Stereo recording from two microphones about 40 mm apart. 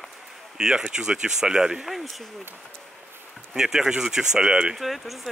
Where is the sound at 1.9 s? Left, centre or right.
Centre.